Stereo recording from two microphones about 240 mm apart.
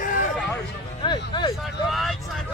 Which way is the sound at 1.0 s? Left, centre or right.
Centre.